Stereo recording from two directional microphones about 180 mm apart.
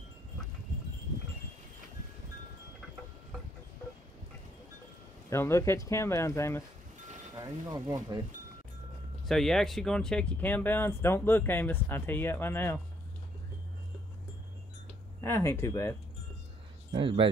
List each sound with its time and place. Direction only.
5.3 s speech: 15° left (ahead or behind)
7.4 s speech: 20° right (ahead or behind)
9.2 s speech: centre (ahead or behind)
15.2 s speech: 15° left (ahead or behind)
16.9 s speech: 30° right (ahead or behind)